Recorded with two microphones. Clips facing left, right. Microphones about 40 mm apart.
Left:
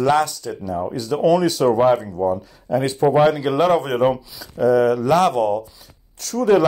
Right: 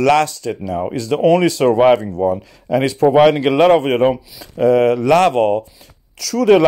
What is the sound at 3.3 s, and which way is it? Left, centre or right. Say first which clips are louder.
Speech: right 5 dB; right.